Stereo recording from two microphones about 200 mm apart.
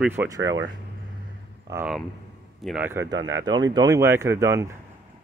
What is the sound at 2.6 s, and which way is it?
Speech, 5° right (ahead or behind).